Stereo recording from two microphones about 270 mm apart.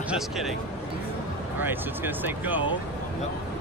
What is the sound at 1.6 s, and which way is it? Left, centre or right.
Speech, centre.